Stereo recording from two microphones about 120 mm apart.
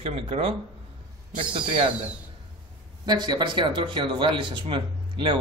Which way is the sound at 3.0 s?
35° right (ahead or behind).